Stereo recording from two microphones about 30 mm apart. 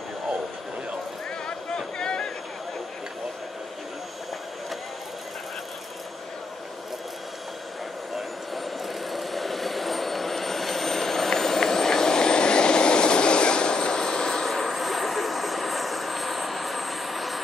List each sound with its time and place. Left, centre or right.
1.8 s a sound: left
8.5 s vehicle: centre; by 14.4 s left
14.4 s vehicle: centre